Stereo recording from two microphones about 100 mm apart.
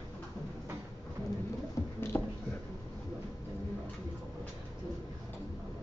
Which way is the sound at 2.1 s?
25° left (ahead or behind).